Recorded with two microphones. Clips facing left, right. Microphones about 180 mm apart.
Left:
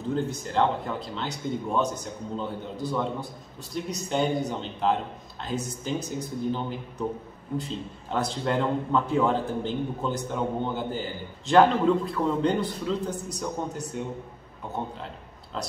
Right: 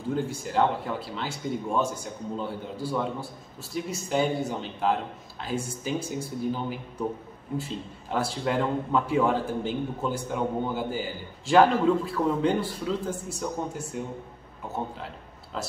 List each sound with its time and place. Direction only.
0.1 s a man's voice: 10° right (ahead or behind)